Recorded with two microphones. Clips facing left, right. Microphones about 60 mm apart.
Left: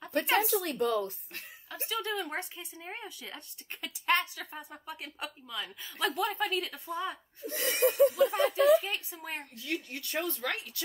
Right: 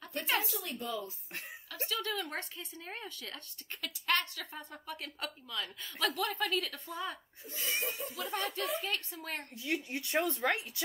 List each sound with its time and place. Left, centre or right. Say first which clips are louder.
0.4 s speech: left 10 dB; left
1.9 s speech: left 3 dB; centre
7.4 s speech: left 10 dB; left
8.2 s speech: left 11 dB; centre
9.6 s speech: right 2 dB; right